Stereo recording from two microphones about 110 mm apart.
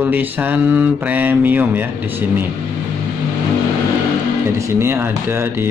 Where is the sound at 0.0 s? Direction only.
15° right (ahead or behind).